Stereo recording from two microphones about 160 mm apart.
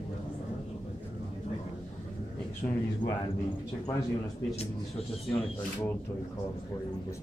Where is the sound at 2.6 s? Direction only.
40° left (ahead or behind).